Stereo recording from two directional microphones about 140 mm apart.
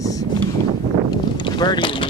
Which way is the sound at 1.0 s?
35° left (ahead or behind).